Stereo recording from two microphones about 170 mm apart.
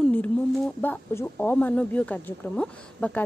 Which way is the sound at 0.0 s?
10° left (ahead or behind).